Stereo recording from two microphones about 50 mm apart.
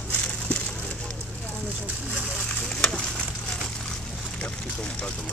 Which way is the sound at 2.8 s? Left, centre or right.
Centre.